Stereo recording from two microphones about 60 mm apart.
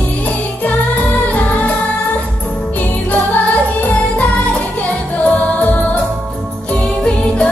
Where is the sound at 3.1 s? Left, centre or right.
Left.